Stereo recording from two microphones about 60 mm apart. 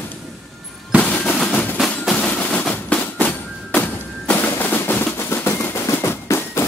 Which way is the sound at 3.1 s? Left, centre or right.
Left.